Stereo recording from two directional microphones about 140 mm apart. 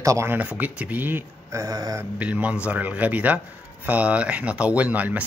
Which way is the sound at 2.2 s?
10° right (ahead or behind).